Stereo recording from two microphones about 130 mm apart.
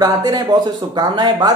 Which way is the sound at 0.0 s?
30° right (ahead or behind).